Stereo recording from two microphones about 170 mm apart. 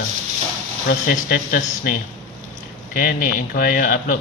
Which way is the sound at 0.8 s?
55° left (ahead or behind).